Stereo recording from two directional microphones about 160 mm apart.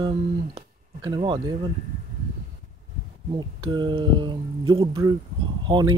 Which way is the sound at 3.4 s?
30° right (ahead or behind).